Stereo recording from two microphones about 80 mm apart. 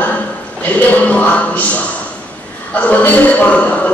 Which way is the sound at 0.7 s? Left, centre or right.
Centre.